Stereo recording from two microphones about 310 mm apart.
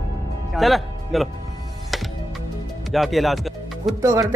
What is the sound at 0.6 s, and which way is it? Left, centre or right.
Speech, centre.